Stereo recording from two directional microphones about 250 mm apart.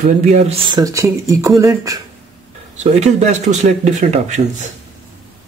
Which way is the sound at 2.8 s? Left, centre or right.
Right.